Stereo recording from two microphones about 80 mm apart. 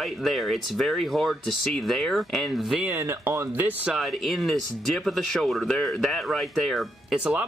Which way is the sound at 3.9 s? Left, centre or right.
Centre.